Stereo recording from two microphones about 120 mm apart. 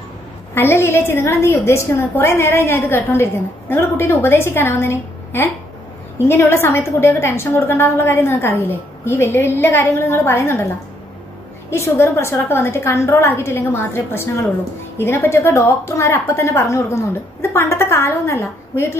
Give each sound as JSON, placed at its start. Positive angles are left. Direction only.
{"t": 0.6, "sound": "a woman's voice", "side_deg": 20}
{"t": 11.7, "sound": "a woman's voice", "side_deg": 25}